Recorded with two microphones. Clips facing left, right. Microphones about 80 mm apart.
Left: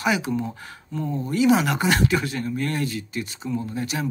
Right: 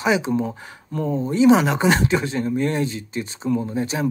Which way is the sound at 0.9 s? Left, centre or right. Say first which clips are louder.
Right 4 dB; right.